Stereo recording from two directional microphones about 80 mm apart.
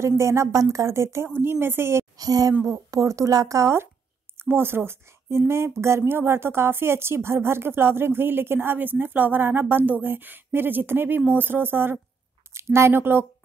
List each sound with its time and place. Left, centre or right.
0.0 s speech: right
2.1 s a woman's voice: right